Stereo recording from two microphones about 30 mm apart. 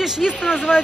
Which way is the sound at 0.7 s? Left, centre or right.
Left.